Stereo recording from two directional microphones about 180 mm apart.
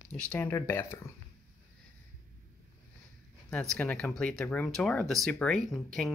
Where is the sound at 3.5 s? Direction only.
5° left (ahead or behind).